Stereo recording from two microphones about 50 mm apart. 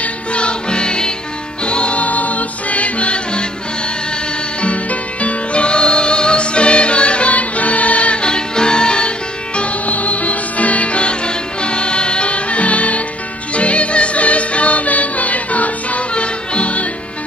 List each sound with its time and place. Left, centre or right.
0.0 s music: left
4.6 s music: left
9.6 s music: left